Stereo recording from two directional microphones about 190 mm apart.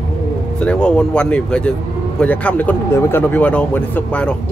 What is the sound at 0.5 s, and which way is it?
Speech, 5° left (ahead or behind).